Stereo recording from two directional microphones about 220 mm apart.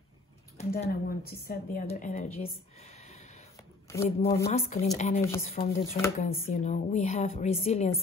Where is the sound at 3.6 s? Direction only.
15° left (ahead or behind).